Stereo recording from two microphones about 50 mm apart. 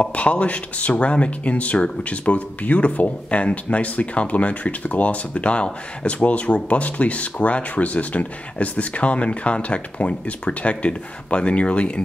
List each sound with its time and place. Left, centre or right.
0.0 s speech: left